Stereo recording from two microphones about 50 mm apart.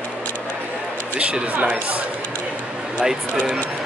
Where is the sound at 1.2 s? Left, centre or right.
Right.